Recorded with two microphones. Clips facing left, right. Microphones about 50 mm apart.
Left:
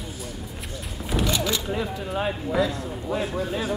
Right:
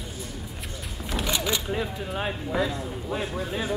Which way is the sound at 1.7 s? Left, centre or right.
Centre.